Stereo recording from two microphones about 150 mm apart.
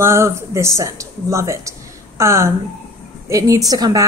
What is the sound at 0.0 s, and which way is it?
A woman's voice, 15° right (ahead or behind).